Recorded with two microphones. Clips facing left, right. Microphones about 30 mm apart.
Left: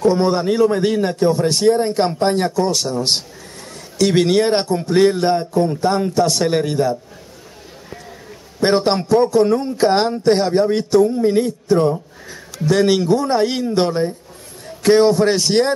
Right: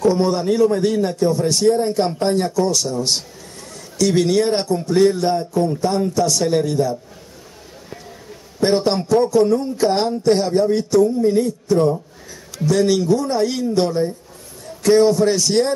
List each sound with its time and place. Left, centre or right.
0.0 s a man's voice: left
8.5 s a man's voice: left